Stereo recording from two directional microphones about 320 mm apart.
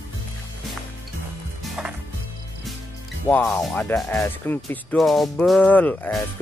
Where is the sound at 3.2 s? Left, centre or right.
Centre.